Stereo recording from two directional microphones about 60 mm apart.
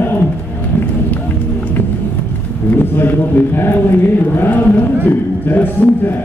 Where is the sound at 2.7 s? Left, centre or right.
Left.